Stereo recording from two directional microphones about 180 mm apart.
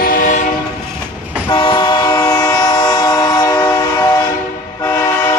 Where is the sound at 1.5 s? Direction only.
25° left (ahead or behind).